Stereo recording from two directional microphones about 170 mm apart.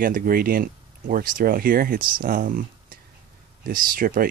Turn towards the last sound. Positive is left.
turn(degrees=-55)  # may be behind; listen again after turning